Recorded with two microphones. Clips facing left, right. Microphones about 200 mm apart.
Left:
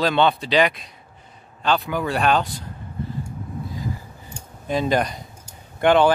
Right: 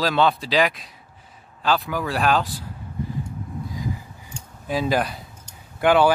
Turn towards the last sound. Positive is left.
turn(degrees=-5)  # may be behind; listen again after turning